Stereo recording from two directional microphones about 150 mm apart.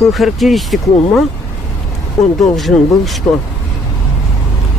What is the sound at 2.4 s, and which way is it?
Speech, centre (ahead or behind).